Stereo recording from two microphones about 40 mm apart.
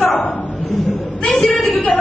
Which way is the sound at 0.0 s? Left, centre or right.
Left.